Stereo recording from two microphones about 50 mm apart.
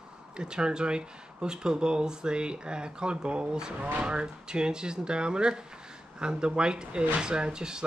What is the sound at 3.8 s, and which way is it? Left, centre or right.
Speech, right.